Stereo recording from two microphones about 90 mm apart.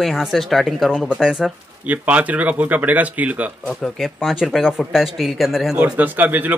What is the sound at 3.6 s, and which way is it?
Speech, centre (ahead or behind).